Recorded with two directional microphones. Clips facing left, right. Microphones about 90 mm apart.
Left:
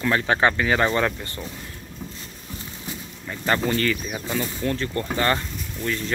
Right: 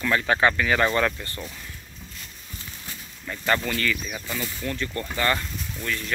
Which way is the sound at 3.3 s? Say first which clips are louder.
Left 2 dB; 25° left (ahead or behind).